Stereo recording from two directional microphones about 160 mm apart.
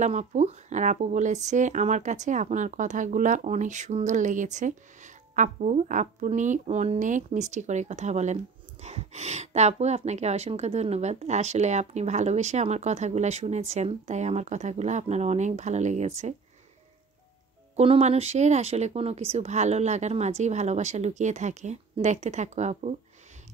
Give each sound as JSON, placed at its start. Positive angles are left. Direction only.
{"t": 0.0, "sound": "speech", "side_deg": -45}
{"t": 17.7, "sound": "speech", "side_deg": -40}